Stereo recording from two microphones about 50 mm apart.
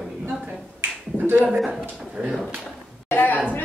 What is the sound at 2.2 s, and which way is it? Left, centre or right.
Speech, centre.